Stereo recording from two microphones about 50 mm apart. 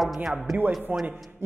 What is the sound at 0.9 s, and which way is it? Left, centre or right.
Speech, right.